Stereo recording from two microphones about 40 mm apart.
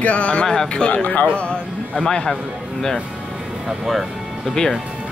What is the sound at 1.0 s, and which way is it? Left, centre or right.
Speech, left.